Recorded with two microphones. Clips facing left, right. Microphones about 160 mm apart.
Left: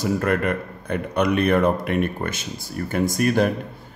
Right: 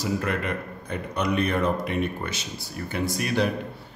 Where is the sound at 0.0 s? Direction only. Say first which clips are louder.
Left 6 dB; 55° left (ahead or behind).